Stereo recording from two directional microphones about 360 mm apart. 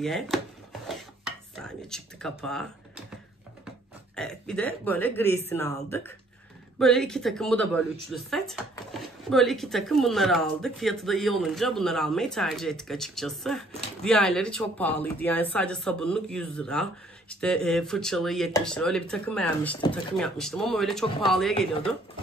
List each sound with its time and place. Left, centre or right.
0.0 s speech: centre
4.1 s speech: centre